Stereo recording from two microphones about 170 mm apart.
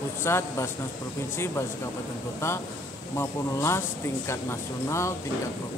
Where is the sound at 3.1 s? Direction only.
15° left (ahead or behind).